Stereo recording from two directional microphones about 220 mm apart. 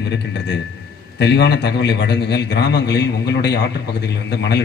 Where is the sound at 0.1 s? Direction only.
50° left (ahead or behind).